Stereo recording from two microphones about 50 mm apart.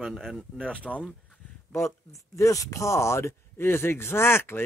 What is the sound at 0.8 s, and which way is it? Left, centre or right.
Speech, left.